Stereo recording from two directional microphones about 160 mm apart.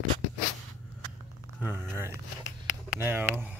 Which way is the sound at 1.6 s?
15° right (ahead or behind).